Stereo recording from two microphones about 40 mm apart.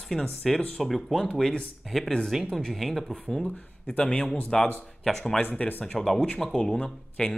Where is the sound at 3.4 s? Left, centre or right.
Left.